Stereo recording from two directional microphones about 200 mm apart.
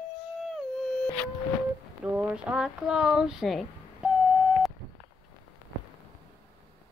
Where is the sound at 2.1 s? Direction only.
5° right (ahead or behind).